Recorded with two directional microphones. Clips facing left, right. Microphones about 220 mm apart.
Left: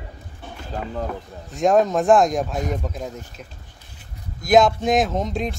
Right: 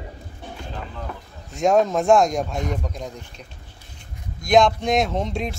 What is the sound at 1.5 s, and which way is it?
Speech, centre (ahead or behind).